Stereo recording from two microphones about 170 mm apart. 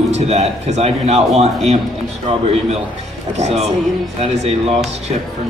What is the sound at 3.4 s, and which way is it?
Speech, 40° right (ahead or behind).